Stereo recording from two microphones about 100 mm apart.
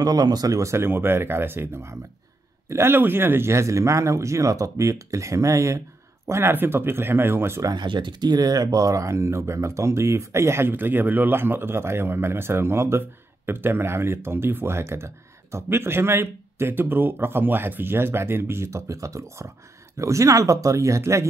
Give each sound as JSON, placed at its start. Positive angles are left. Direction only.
{"t": 0.0, "sound": "speech", "side_deg": -40}
{"t": 7.7, "sound": "speech", "side_deg": -50}